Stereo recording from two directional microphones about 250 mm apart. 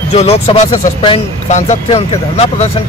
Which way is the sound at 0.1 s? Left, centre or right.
Left.